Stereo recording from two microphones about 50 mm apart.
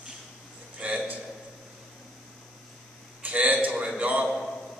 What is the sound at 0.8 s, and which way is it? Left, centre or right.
Speech, right.